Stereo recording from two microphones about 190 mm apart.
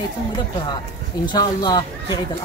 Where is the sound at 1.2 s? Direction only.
20° left (ahead or behind).